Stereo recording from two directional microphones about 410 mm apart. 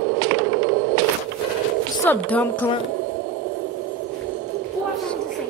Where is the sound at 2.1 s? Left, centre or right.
Centre.